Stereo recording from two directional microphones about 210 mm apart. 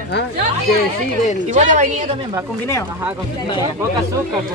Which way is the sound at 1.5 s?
35° right (ahead or behind).